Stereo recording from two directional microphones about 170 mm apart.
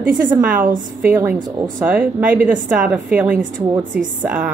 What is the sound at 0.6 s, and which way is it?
Speech, 50° right (ahead or behind).